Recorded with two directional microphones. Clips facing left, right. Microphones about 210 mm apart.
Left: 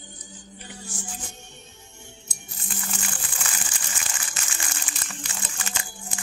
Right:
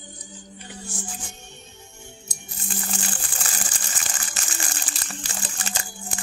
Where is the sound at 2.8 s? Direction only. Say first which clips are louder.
Right 2 dB; 35° right (ahead or behind).